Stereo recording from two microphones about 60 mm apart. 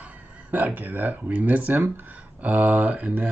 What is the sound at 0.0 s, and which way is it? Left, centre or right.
Speech, right.